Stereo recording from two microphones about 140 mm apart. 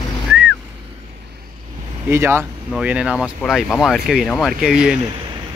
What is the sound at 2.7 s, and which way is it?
Speech, 5° right (ahead or behind).